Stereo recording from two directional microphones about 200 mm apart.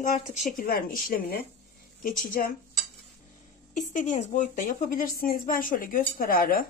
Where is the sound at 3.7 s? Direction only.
40° left (ahead or behind).